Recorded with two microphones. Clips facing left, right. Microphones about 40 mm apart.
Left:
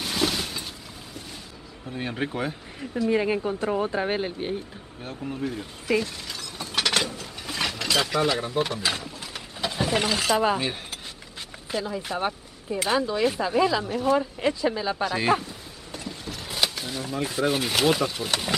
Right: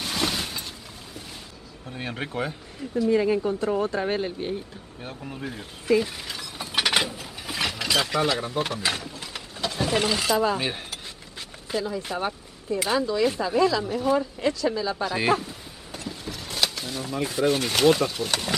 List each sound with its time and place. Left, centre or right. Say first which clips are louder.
0.0 s a sound: left 1 dB; centre
1.9 s speech: left 3 dB; centre
3.1 s speech: right 2 dB; left
5.0 s speech: left 4 dB; centre
5.9 s a sound: right 2 dB; centre
10.3 s speech: left 1 dB; centre
11.7 s speech: right 1 dB; centre
12.2 s speech: left 1 dB; centre
13.8 s speech: even; centre
14.1 s speech: even; centre
15.0 s speech: even; centre
15.9 s a sound: right 1 dB; centre